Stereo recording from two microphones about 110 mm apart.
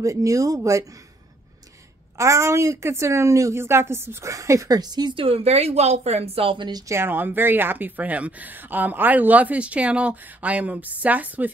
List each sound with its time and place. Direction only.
0.0 s speech: 30° right (ahead or behind)
2.1 s speech: 30° right (ahead or behind); by 6.7 s 55° right (ahead or behind)
6.7 s speech: 25° right (ahead or behind)